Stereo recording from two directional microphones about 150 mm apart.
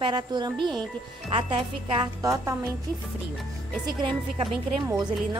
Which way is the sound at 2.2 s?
20° right (ahead or behind).